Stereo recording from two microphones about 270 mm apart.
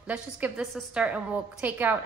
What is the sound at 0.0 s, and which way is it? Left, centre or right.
A woman's voice, centre.